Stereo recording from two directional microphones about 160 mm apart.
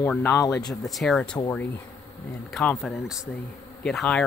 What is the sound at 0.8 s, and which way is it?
Speech, centre (ahead or behind).